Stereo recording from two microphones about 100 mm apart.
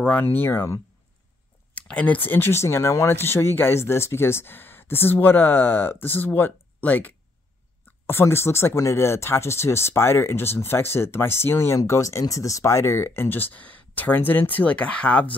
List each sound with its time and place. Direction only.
0.0 s speech: 20° left (ahead or behind)
1.8 s speech: 15° left (ahead or behind)